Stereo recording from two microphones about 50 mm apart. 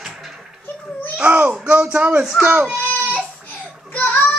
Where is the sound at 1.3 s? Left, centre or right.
Right.